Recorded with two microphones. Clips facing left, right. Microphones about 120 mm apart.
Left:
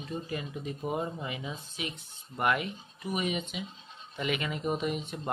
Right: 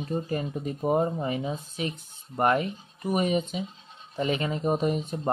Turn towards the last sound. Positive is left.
turn(degrees=-40)  # may be behind; listen again after turning